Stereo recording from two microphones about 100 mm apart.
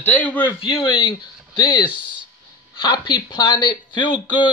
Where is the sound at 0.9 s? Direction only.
55° left (ahead or behind).